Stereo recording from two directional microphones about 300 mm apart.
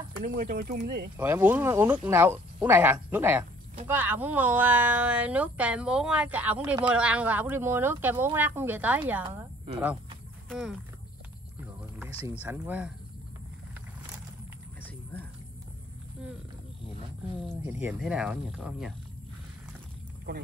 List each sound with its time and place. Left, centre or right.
0.2 s speech: right
1.1 s a woman's voice: centre
11.6 s speech: centre
17.6 s speech: centre